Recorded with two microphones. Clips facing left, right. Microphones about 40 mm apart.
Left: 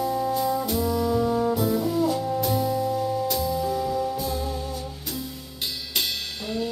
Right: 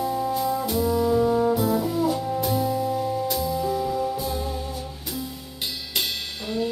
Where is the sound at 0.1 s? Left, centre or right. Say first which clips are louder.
Even; centre.